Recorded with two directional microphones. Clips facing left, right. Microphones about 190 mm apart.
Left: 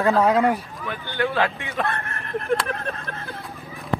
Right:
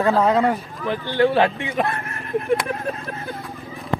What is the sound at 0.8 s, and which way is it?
Speech, 30° right (ahead or behind).